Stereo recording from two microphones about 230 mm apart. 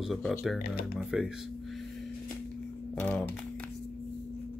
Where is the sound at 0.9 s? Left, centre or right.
Centre.